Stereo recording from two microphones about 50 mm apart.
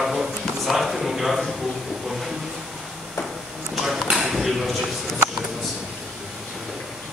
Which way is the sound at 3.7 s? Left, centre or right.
Centre.